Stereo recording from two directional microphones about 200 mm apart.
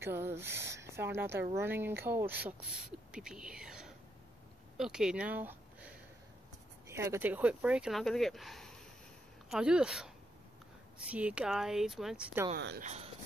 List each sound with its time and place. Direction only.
0.0 s a woman's voice: 10° right (ahead or behind)
6.9 s speech: 15° right (ahead or behind)
12.5 s speech: 55° right (ahead or behind)
12.8 s speech: 35° right (ahead or behind)